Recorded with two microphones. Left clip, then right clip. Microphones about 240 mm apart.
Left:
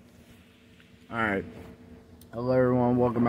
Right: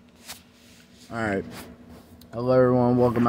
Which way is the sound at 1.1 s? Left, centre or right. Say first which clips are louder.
Right 1 dB; centre.